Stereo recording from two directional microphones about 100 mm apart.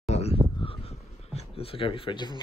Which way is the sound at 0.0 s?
90° left.